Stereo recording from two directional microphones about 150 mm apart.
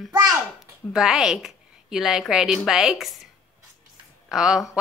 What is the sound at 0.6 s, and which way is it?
A woman's voice, 5° right (ahead or behind).